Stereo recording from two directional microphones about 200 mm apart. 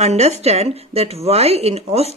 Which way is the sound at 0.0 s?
35° right (ahead or behind).